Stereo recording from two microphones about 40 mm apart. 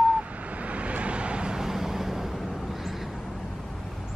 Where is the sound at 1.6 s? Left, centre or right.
Centre.